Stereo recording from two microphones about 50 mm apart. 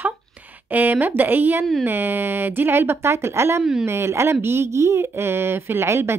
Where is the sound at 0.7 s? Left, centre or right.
Right.